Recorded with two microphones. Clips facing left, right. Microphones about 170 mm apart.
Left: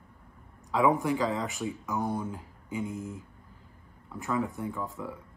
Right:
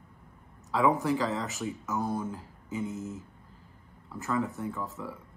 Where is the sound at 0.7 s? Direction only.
15° left (ahead or behind).